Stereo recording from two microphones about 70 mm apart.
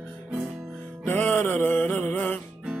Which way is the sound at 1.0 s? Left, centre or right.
Left.